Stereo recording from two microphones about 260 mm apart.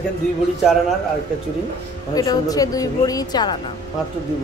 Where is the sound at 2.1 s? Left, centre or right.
Centre.